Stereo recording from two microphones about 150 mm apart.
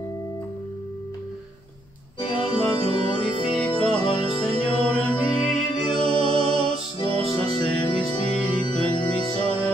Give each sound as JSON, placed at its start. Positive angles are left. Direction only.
{"t": 2.1, "sound": "music", "side_deg": 30}
{"t": 8.0, "sound": "organ", "side_deg": 0}
{"t": 8.9, "sound": "music", "side_deg": 30}